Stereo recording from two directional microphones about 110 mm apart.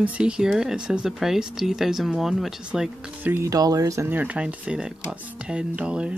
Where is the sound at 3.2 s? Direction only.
20° right (ahead or behind).